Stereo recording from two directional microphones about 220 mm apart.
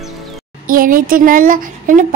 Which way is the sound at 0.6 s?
40° right (ahead or behind).